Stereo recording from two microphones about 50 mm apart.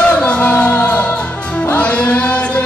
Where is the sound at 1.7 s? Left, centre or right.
Left.